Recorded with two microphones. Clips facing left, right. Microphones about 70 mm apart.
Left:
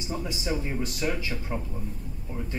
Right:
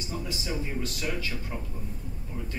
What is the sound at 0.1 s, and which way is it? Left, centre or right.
Speech, left.